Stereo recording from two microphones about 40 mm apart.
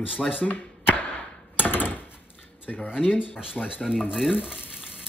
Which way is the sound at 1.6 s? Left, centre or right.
Left.